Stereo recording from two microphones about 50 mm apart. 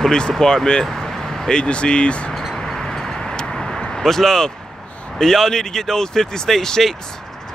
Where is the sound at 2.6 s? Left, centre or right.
Centre.